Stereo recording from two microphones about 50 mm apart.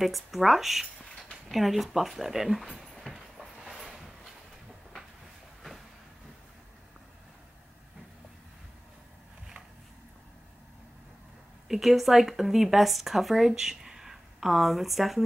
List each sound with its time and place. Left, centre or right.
0.0 s speech: centre
3.1 s train: centre
3.9 s a sound: centre
11.6 s speech: centre